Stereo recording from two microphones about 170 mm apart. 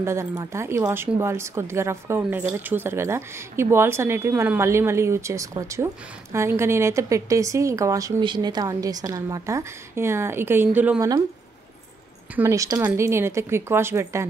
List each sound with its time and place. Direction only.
0.0 s speech: 15° right (ahead or behind)
11.0 s a woman's voice: 20° right (ahead or behind)
12.4 s speech: 20° right (ahead or behind)